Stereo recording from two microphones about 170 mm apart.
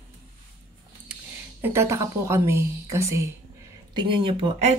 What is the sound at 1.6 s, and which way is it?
Speech, 15° right (ahead or behind).